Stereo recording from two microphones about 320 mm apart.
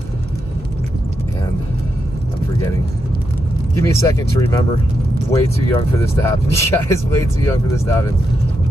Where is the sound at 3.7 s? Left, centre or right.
Centre.